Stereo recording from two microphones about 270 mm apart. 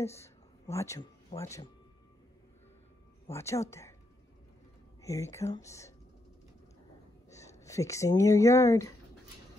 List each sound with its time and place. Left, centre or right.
0.0 s speech: centre
3.3 s speech: centre
5.0 s speech: centre
7.2 s speech: centre